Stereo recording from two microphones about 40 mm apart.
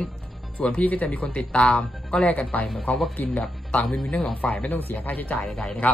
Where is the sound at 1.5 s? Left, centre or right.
Left.